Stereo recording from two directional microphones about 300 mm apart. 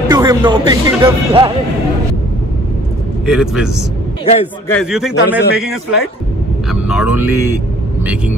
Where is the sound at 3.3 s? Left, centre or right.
Centre.